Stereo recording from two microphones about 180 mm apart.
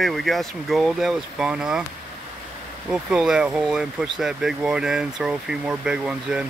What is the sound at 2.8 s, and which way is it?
Speech, 5° right (ahead or behind).